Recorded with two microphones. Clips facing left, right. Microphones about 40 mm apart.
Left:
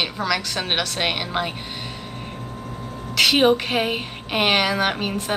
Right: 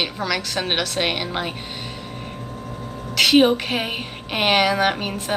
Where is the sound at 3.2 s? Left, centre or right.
Centre.